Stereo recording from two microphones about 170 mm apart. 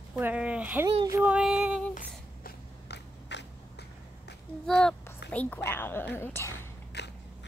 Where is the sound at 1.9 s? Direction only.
60° left (ahead or behind); by 4.3 s 80° left.